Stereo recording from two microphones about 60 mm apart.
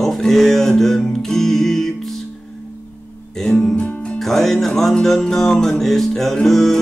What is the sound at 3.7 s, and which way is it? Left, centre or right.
Music, centre.